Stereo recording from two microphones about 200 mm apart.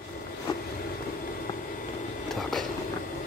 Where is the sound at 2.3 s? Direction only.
Centre (ahead or behind).